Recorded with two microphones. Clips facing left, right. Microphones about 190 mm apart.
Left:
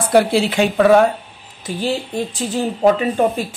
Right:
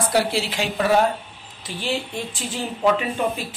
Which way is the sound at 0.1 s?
55° left (ahead or behind).